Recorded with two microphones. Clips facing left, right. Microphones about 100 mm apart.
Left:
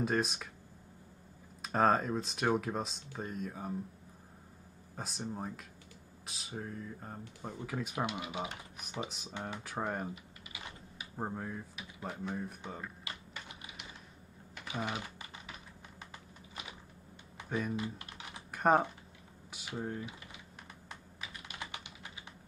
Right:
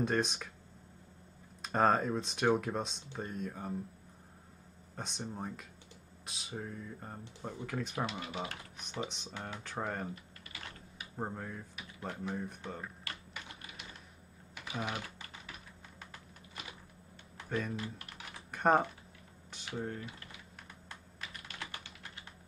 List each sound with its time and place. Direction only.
0.0 s speech: centre (ahead or behind)
1.6 s speech: centre (ahead or behind)
4.9 s speech: 5° left (ahead or behind)
10.5 s typing: 10° left (ahead or behind)
14.6 s speech: centre (ahead or behind)
17.4 s speech: 10° left (ahead or behind)
17.9 s typing: 20° left (ahead or behind)
18.5 s speech: 5° left (ahead or behind)
21.2 s typing: 15° left (ahead or behind)